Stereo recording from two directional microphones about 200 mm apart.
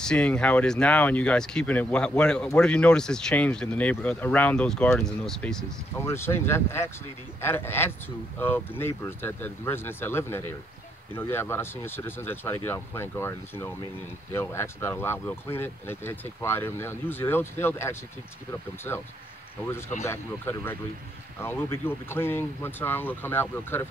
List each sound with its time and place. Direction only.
0.0 s speech: 5° left (ahead or behind)
20.1 s speech: 10° left (ahead or behind)